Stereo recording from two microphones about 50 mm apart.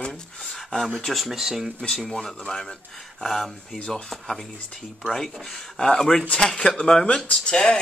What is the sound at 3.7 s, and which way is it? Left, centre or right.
Speech, centre.